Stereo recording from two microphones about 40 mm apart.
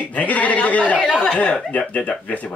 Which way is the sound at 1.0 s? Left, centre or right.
Left.